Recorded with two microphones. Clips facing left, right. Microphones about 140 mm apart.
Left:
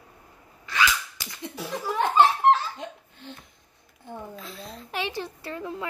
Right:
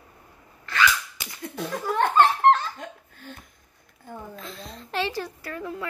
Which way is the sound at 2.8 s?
20° left (ahead or behind).